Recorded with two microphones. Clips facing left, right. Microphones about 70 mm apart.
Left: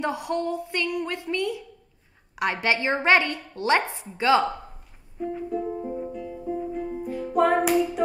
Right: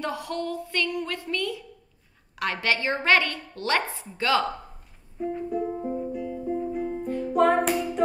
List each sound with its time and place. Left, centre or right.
0.0 s a woman's voice: left
5.2 s music: centre
5.6 s music: centre